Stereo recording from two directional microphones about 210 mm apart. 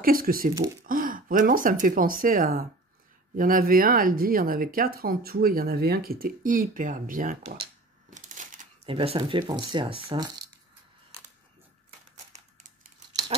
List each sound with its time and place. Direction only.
0.0 s speech: 45° right (ahead or behind); by 10.3 s 20° right (ahead or behind)